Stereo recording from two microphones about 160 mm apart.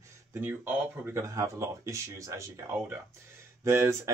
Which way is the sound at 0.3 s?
15° right (ahead or behind).